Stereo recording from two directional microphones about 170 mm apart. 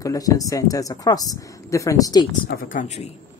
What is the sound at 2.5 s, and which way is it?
Speech, 55° left (ahead or behind).